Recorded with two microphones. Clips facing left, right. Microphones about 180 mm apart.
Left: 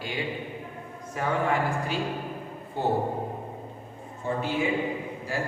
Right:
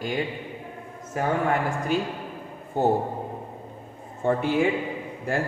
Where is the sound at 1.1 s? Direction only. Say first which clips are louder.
Right 2 dB; 50° right (ahead or behind).